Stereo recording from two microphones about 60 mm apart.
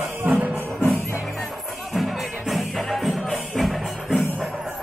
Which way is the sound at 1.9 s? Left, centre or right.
Centre.